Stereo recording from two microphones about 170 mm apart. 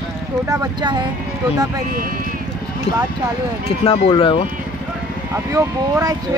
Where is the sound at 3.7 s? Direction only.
35° left (ahead or behind).